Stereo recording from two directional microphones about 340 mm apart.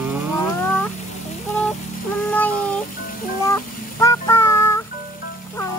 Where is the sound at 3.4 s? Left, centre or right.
Centre.